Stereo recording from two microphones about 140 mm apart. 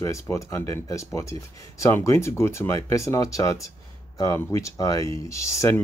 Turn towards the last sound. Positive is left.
turn(degrees=20)  # may be behind; listen again after turning